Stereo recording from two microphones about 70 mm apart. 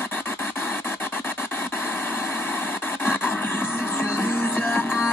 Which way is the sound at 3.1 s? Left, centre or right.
Left.